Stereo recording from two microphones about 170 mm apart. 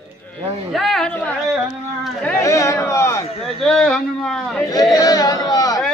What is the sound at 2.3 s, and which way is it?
Speech, 20° left (ahead or behind).